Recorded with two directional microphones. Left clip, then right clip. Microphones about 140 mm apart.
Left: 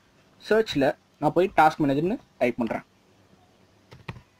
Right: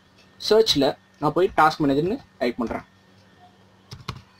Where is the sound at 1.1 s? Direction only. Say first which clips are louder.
Right 1 dB; 45° left (ahead or behind).